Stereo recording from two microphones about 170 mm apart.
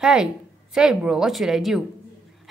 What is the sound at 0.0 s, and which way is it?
A woman's voice, 5° right (ahead or behind).